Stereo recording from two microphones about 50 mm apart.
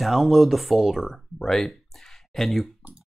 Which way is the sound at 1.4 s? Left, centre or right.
Centre.